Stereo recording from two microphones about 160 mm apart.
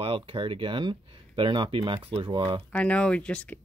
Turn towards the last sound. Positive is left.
turn(degrees=10)  # may be behind; listen again after turning